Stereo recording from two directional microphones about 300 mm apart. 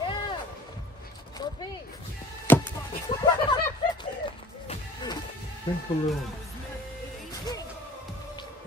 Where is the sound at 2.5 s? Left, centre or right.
Centre.